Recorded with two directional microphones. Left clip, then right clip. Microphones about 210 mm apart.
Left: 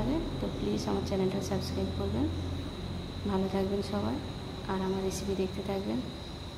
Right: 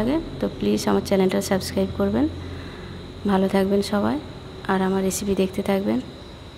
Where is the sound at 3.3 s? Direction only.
45° right (ahead or behind).